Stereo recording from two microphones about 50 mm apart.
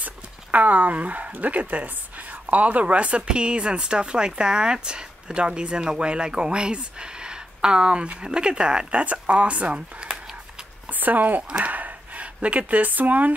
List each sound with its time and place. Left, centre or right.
0.0 s speech: right
10.9 s speech: right